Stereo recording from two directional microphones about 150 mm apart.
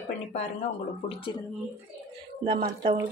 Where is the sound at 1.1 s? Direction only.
35° left (ahead or behind).